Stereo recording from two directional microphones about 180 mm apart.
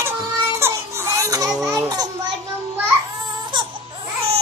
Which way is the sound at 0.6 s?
15° right (ahead or behind).